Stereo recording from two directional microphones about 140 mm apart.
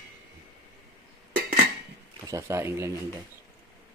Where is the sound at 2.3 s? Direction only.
20° right (ahead or behind).